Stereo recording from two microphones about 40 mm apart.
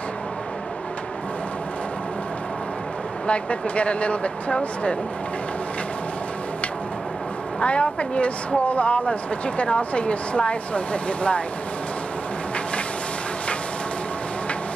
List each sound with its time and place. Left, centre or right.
3.3 s speech: left
7.6 s speech: left